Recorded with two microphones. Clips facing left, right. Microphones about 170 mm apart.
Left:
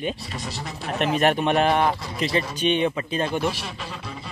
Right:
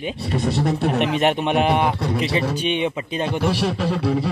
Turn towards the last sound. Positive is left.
turn(degrees=-70)  # may be behind; listen again after turning